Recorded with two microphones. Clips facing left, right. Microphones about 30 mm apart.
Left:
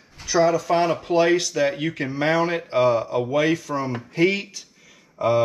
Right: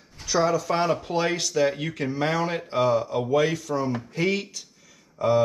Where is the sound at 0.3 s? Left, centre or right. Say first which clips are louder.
Left 4 dB; centre.